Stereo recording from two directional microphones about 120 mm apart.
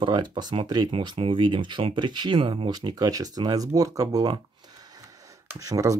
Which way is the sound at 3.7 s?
30° right (ahead or behind).